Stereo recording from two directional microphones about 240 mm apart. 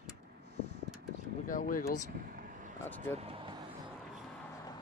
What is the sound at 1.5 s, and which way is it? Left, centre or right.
Speech, left.